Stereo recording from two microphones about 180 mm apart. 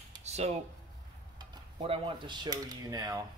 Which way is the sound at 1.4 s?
30° right (ahead or behind).